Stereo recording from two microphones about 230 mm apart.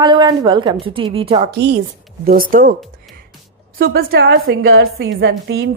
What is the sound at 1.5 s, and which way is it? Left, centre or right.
A woman's voice, right.